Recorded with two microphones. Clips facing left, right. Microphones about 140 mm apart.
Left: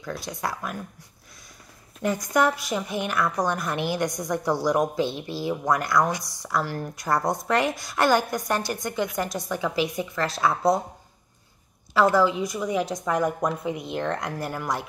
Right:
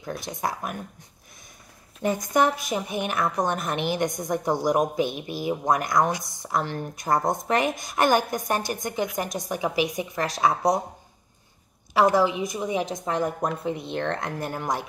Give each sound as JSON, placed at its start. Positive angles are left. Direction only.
{"t": 0.0, "sound": "a woman's voice", "side_deg": -20}
{"t": 2.3, "sound": "a woman's voice", "side_deg": -20}
{"t": 11.9, "sound": "a woman's voice", "side_deg": -15}